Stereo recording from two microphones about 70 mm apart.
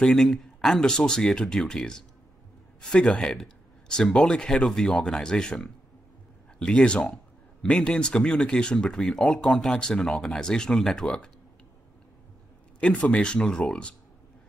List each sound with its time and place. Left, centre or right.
0.0 s speech: centre
12.8 s speech: centre